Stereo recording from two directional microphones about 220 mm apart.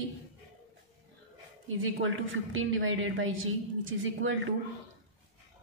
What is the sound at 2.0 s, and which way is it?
A woman's voice, 60° right (ahead or behind).